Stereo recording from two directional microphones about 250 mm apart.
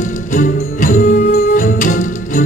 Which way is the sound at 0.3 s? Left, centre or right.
Left.